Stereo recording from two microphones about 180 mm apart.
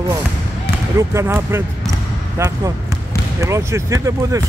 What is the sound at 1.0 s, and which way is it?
Speech, 15° right (ahead or behind).